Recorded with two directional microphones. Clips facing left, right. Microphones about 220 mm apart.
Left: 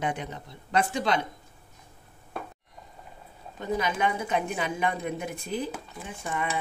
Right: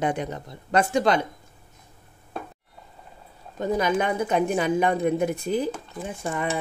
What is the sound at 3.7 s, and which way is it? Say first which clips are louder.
A woman's voice: right 4 dB; 45° right (ahead or behind).